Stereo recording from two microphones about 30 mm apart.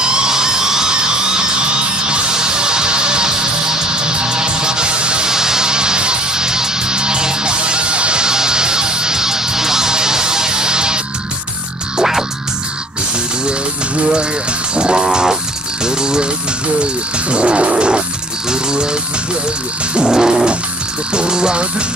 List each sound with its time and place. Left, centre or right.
0.0 s music: right
5.2 s music: centre; by 8.3 s right
8.3 s music: right
12.0 s music: centre
14.8 s music: right
15.8 s a sound: right
16.8 s music: right
18.5 s a sound: right
20.0 s cat: right
21.1 s music: right